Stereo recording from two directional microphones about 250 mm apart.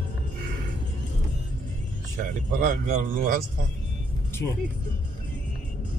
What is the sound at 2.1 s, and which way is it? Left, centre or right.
Speech, right.